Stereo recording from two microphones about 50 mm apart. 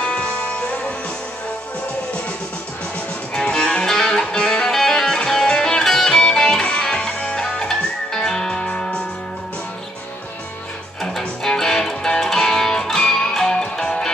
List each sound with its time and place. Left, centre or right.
0.0 s music: centre
3.3 s music: centre
11.0 s music: centre